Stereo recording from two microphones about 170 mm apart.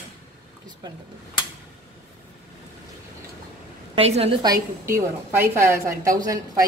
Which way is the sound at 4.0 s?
35° right (ahead or behind).